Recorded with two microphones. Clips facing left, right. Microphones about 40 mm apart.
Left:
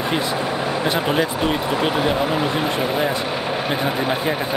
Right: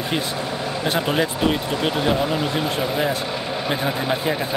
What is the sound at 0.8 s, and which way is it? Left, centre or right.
Speech, centre.